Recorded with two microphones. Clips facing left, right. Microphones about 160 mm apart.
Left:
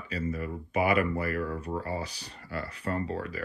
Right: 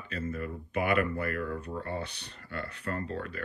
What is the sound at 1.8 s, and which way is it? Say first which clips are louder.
Speech: left 2 dB; 5° left (ahead or behind).